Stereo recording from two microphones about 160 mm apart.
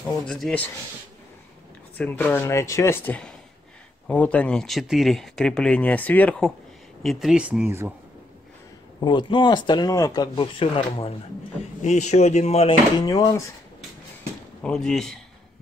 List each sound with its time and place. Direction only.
0.1 s speech: 5° left (ahead or behind)
2.0 s speech: 10° left (ahead or behind); by 7.9 s 15° right (ahead or behind)
9.0 s speech: 30° left (ahead or behind)
11.8 s speech: 45° left (ahead or behind)
13.0 s speech: 25° left (ahead or behind)
14.6 s speech: 5° left (ahead or behind)